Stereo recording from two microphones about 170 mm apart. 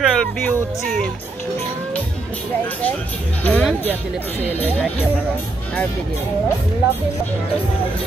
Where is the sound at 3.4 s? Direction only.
10° left (ahead or behind).